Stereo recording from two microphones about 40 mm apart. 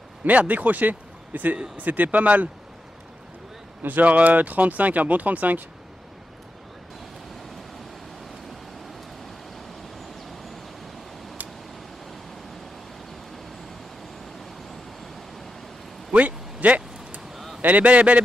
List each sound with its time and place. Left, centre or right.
0.2 s a man's voice: right
4.0 s speech: right
16.1 s a sound: right
17.6 s speech: right